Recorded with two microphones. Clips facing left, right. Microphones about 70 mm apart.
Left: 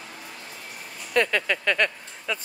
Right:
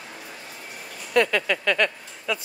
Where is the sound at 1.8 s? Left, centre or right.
Left.